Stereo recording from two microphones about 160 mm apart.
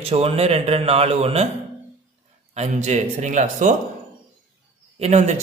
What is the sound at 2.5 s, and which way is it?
A man's voice, 45° right (ahead or behind).